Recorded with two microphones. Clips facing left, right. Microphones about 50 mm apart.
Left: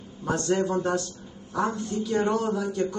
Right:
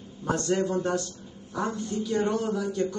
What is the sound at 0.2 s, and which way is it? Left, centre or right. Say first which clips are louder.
Speech: left 1 dB; left.